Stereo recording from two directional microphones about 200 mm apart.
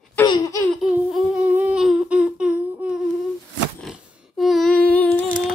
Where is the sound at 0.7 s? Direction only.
Centre (ahead or behind).